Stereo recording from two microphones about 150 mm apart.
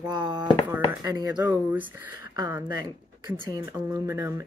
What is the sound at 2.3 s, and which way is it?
Speech, 25° right (ahead or behind).